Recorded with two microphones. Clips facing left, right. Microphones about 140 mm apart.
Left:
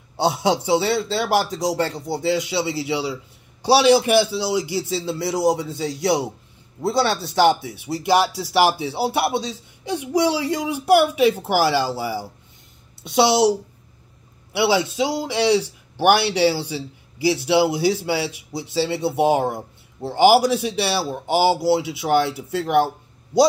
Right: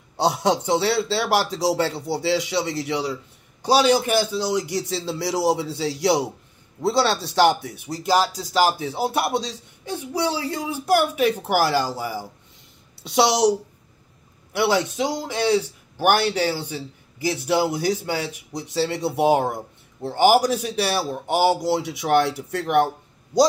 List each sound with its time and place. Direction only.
0.2 s a man's voice: centre (ahead or behind)
9.8 s a man's voice: 15° left (ahead or behind)
20.0 s a man's voice: 10° left (ahead or behind)